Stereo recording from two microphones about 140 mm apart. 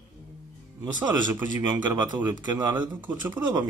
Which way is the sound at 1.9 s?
30° right (ahead or behind).